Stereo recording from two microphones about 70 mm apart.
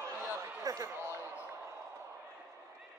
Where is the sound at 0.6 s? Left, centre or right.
Right.